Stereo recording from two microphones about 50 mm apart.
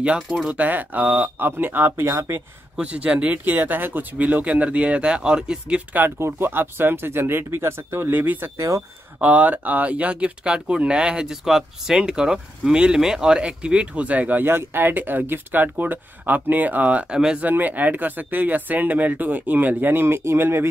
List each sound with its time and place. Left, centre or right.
0.5 s speech: right
2.0 s speech: right
2.7 s speech: right
3.4 s speech: right; by 5.8 s centre
6.1 s speech: right
6.5 s speech: right
8.1 s speech: right
8.5 s speech: right
9.2 s speech: right
14.4 s speech: right
17.1 s speech: centre
17.4 s speech: right